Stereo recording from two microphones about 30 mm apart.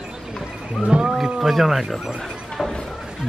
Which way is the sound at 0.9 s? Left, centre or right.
Right.